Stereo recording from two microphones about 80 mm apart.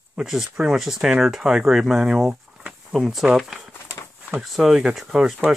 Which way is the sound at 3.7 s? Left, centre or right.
Left.